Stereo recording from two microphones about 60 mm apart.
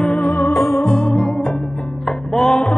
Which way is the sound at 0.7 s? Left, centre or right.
Centre.